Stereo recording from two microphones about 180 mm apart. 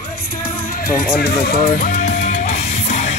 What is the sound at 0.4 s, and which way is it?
Music, 50° left (ahead or behind).